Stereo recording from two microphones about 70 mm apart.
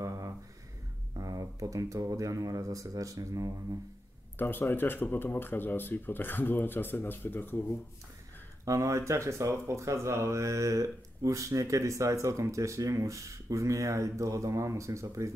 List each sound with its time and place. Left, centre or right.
0.0 s a sound: right
1.1 s speech: right
4.4 s speech: left
8.6 s speech: right